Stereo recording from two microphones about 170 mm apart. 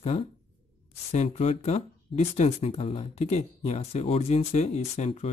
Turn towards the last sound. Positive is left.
turn(degrees=40)  # may be behind; listen again after turning